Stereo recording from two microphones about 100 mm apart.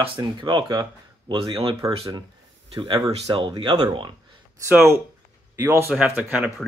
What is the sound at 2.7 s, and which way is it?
Speech, 65° right (ahead or behind).